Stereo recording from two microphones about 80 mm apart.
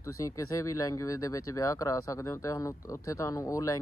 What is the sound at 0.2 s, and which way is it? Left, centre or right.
Speech, left.